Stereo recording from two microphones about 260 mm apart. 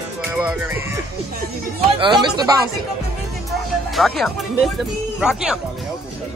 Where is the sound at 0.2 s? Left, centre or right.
Centre.